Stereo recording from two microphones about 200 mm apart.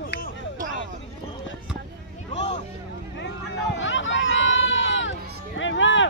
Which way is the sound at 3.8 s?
70° left (ahead or behind).